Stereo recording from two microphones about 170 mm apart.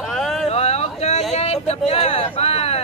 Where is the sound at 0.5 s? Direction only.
40° left (ahead or behind).